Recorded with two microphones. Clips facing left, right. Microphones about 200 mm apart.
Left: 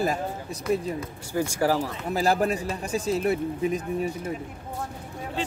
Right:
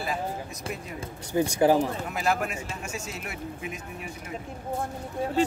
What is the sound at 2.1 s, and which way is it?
A man's voice, 35° left (ahead or behind).